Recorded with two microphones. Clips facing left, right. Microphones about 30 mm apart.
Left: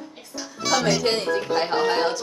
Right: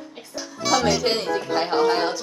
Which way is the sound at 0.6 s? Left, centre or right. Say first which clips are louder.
Right 1 dB; centre.